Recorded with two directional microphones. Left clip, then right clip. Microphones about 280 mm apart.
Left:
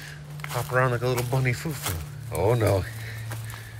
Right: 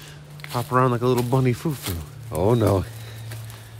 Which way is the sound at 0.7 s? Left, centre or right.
Centre.